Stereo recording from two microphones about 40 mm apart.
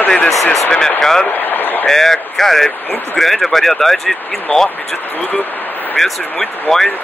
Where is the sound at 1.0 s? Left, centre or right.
Centre.